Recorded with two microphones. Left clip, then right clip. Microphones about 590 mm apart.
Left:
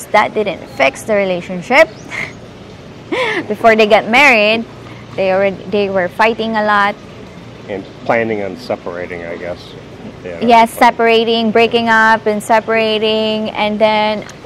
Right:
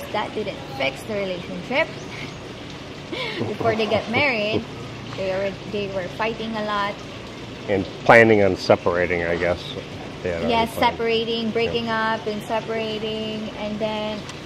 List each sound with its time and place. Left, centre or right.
0.1 s a woman's voice: left
3.2 s a woman's voice: left
7.7 s speech: right
10.4 s a woman's voice: left